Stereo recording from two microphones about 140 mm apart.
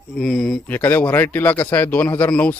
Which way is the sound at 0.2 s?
5° left (ahead or behind).